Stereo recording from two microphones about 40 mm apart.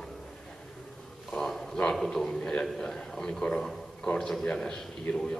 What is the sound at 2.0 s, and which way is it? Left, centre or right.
A man's voice, centre.